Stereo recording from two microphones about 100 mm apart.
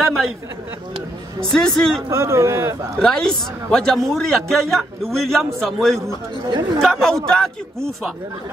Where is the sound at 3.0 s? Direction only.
5° left (ahead or behind).